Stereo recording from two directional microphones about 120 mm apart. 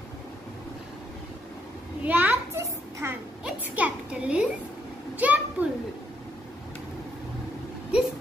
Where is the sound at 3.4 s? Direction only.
10° right (ahead or behind).